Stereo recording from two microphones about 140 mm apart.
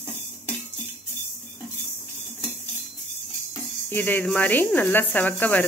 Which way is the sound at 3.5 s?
15° left (ahead or behind).